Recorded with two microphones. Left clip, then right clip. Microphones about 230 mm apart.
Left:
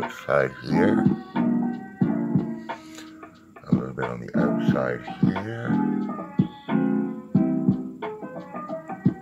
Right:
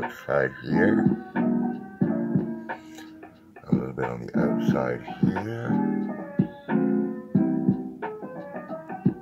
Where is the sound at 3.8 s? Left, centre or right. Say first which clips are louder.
Even; centre.